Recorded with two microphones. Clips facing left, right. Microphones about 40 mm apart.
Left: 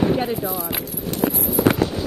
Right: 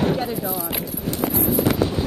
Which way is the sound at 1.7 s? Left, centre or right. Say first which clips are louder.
Left 8 dB; left.